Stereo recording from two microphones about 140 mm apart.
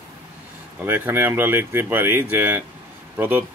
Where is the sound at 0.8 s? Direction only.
15° right (ahead or behind).